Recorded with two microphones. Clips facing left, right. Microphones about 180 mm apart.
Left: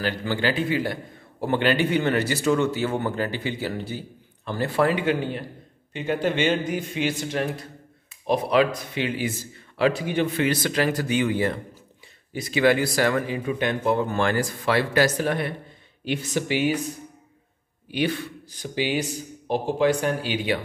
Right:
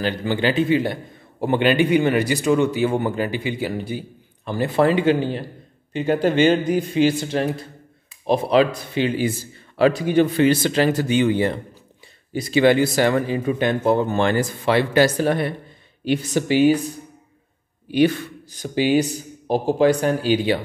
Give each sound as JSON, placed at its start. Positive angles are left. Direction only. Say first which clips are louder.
{"t": 0.0, "sound": "speech", "louder": "right 4 dB", "side_deg": -20}
{"t": 17.9, "sound": "speech", "louder": "right 8 dB", "side_deg": -45}